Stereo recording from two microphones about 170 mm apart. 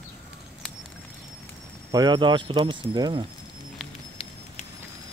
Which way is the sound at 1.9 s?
25° right (ahead or behind).